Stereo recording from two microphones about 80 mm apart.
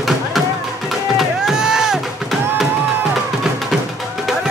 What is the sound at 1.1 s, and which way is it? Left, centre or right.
Music, centre.